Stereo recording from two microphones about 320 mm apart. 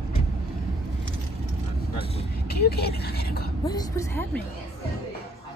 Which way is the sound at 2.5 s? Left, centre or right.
Left.